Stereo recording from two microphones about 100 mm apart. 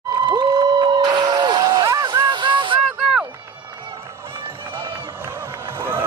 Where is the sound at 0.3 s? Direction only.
45° right (ahead or behind).